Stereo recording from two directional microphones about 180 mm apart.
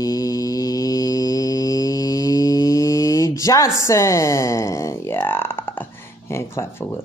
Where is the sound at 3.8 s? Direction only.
15° left (ahead or behind).